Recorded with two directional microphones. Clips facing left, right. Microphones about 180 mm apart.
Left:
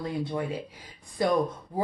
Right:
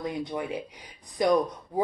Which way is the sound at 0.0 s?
15° right (ahead or behind).